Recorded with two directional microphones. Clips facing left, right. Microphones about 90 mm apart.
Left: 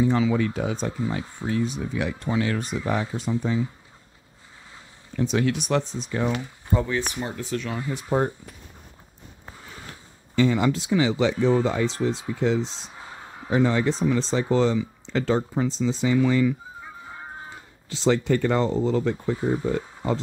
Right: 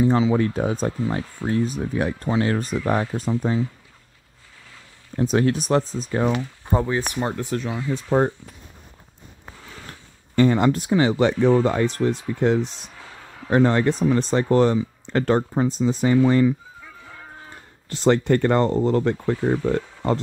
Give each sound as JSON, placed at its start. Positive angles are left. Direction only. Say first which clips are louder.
{"t": 0.0, "sound": "speech", "louder": "right 3 dB", "side_deg": -30}
{"t": 5.1, "sound": "speech", "louder": "right 3 dB", "side_deg": -40}
{"t": 7.0, "sound": "speech", "louder": "right 4 dB", "side_deg": -45}
{"t": 10.3, "sound": "speech", "louder": "right 3 dB", "side_deg": -50}
{"t": 12.9, "sound": "a sound", "louder": "left 1 dB", "side_deg": 25}
{"t": 13.5, "sound": "speech", "louder": "right 3 dB", "side_deg": -55}
{"t": 16.8, "sound": "music", "louder": "left 3 dB", "side_deg": 25}
{"t": 17.8, "sound": "speech", "louder": "right 3 dB", "side_deg": -55}